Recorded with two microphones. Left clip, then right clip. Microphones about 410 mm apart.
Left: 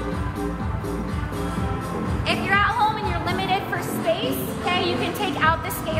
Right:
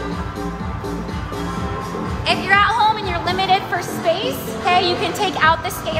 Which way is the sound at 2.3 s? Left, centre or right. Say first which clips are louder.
Right 6 dB; right.